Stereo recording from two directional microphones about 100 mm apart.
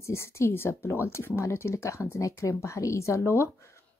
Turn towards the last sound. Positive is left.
turn(degrees=25)  # may be behind; listen again after turning